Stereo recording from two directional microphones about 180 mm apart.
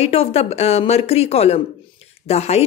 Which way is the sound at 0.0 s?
35° left (ahead or behind).